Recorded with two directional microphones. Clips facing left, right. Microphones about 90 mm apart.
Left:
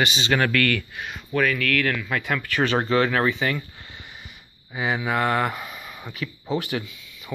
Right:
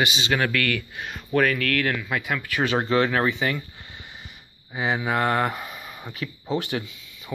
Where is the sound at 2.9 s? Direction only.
25° right (ahead or behind).